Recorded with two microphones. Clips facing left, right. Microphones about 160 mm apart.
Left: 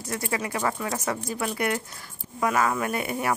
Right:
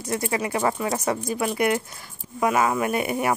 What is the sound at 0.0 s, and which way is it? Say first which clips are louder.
Speech: right 4 dB; 20° right (ahead or behind).